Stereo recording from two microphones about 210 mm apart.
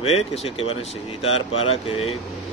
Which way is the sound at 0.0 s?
30° left (ahead or behind).